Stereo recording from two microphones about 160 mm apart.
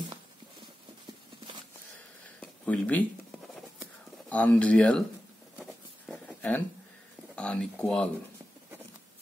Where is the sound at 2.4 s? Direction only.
10° left (ahead or behind).